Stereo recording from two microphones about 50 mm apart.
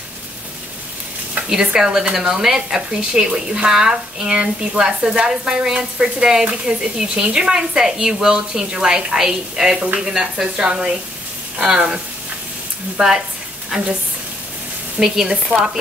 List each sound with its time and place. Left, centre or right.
1.5 s speech: centre
13.7 s speech: centre
15.0 s speech: centre